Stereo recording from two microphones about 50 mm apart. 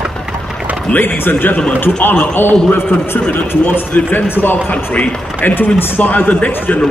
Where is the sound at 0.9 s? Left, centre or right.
Left.